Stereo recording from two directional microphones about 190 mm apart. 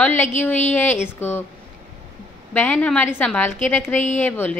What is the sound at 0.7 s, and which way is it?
Speech, 10° left (ahead or behind).